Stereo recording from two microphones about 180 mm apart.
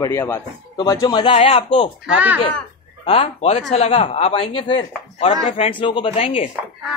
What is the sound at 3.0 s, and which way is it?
Speech, 35° left (ahead or behind).